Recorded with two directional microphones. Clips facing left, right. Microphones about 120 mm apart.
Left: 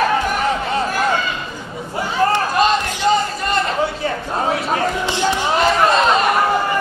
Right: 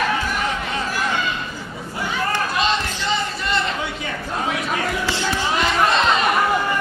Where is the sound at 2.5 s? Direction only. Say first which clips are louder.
Left 5 dB; 45° left (ahead or behind).